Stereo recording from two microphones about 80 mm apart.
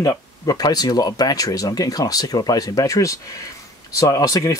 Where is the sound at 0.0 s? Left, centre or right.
Left.